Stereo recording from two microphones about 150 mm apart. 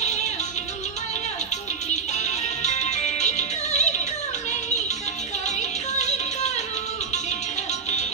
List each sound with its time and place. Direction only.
2.1 s music: 50° left (ahead or behind)
5.9 s music: 50° left (ahead or behind)